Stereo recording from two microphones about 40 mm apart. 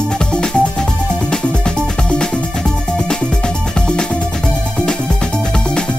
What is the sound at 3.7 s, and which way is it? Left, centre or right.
Music, left.